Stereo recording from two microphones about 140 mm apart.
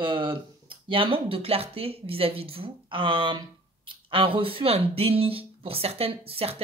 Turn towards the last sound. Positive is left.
turn(degrees=-45)  # may be behind; listen again after turning